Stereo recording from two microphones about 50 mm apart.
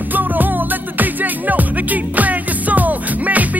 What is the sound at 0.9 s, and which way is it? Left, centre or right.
Music, right.